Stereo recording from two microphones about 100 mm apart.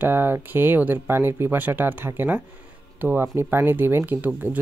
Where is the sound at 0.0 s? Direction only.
20° right (ahead or behind).